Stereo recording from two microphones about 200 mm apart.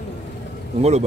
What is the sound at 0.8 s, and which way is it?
Speech, 35° right (ahead or behind).